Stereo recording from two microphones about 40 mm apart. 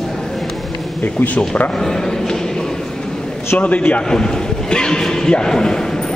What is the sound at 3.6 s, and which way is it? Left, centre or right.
Speech, left.